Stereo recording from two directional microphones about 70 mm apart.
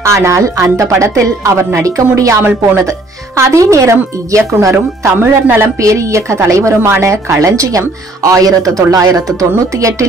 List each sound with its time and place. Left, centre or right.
0.0 s a woman's voice: right
3.3 s a woman's voice: right
5.2 s speech: right
5.8 s a woman's voice: right